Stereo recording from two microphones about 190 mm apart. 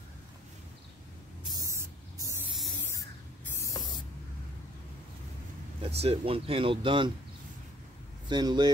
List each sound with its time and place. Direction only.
1.4 s a sound: 20° right (ahead or behind)
3.5 s spray: 15° left (ahead or behind)
5.8 s speech: 30° right (ahead or behind)
8.3 s speech: 20° right (ahead or behind)